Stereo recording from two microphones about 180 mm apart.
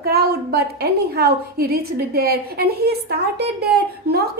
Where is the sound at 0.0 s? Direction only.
60° right (ahead or behind).